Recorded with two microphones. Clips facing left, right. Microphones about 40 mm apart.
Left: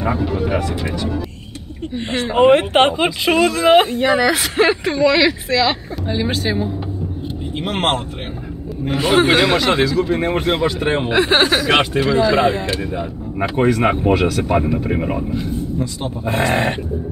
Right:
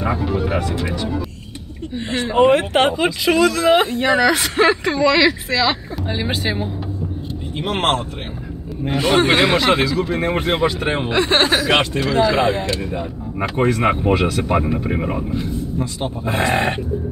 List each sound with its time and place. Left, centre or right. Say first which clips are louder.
0.0 s speech: left 1 dB; centre
2.3 s speech: left 2 dB; left
3.8 s speech: even; centre
6.0 s speech: left 2 dB; centre
7.5 s speech: even; centre
9.4 s speech: even; centre
11.8 s speech: left 3 dB; centre
12.2 s speech: right 1 dB; centre